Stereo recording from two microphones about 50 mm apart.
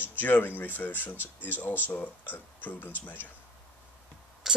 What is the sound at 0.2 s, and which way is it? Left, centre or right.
Speech, left.